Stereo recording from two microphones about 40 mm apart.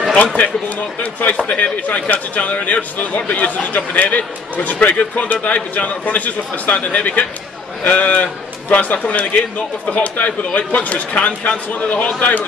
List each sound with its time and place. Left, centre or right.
0.2 s a man's voice: left
1.5 s a man's voice: left